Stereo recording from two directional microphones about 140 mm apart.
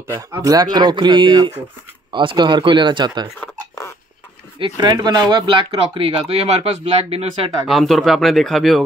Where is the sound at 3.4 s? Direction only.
15° left (ahead or behind).